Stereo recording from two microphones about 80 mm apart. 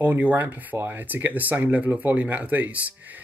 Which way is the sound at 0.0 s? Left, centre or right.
Right.